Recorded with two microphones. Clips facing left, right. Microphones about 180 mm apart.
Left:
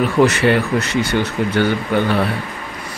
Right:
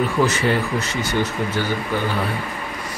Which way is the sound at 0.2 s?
70° left (ahead or behind).